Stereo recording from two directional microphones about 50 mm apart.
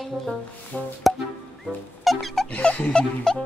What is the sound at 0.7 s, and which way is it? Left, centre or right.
Speech, left.